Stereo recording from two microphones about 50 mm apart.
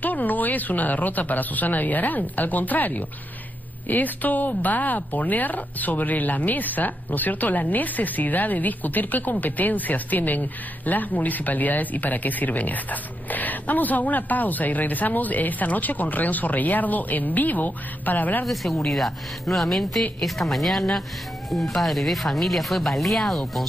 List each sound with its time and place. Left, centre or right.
0.0 s speech: left
18.4 s speech: centre